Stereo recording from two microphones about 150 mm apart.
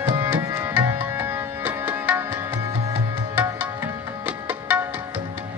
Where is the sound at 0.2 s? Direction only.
15° right (ahead or behind).